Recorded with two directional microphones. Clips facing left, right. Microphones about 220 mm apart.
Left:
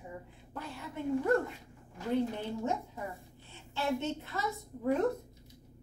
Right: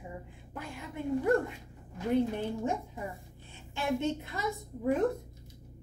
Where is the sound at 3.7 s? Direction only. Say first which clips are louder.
Right 2 dB; 15° right (ahead or behind).